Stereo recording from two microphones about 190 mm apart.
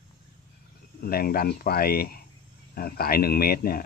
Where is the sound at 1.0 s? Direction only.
50° left (ahead or behind).